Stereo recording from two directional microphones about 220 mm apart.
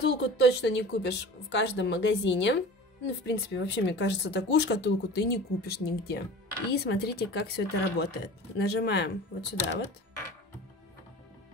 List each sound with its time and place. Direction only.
0.0 s speech: 50° left (ahead or behind)